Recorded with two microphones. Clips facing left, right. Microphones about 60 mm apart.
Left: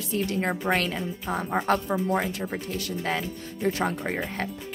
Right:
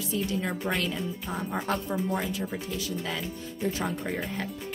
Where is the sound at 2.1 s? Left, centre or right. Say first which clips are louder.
Left 3 dB; left.